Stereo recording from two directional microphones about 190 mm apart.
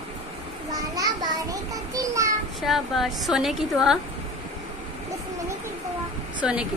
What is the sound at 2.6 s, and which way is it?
A woman's voice, centre (ahead or behind).